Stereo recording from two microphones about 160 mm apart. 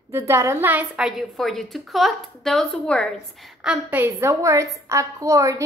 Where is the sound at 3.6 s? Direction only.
10° right (ahead or behind).